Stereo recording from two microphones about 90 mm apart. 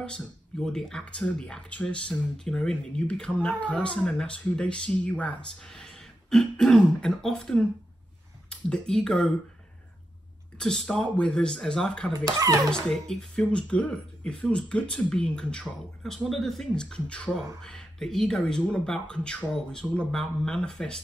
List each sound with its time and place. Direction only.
0.0 s speech: 10° left (ahead or behind)
10.6 s speech: 5° left (ahead or behind)
12.1 s speech: 40° right (ahead or behind)
12.7 s speech: 5° left (ahead or behind)